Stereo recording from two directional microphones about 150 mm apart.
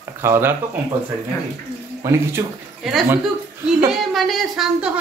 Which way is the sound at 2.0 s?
20° right (ahead or behind).